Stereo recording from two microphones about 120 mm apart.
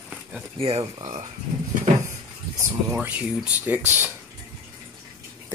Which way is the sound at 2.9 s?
10° right (ahead or behind).